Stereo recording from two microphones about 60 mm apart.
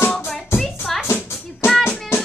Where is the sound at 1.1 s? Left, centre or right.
Left.